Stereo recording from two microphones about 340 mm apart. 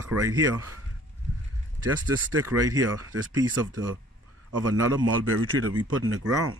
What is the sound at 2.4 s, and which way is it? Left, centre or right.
Speech, centre.